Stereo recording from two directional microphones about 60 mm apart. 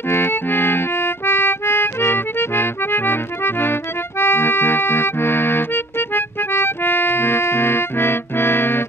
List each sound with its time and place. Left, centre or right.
0.1 s accordion: left